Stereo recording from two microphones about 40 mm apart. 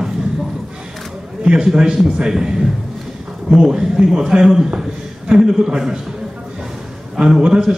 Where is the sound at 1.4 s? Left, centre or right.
Centre.